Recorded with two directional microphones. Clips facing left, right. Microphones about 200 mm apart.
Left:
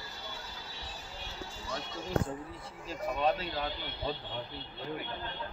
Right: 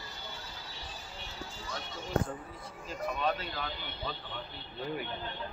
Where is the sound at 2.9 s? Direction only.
30° left (ahead or behind).